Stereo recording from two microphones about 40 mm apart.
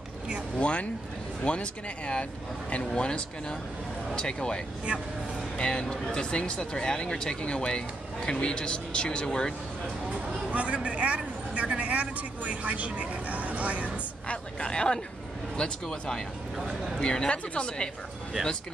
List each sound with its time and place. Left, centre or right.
0.6 s a sound: left
1.4 s speech: left
5.6 s speech: left
10.5 s a man's voice: right
14.2 s speech: left
16.5 s speech: centre
17.0 s speech: left